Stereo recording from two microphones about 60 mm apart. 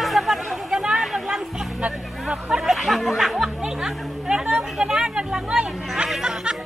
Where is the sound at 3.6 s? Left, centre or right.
Centre.